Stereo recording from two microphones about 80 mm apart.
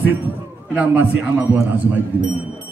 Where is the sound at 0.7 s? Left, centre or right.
Centre.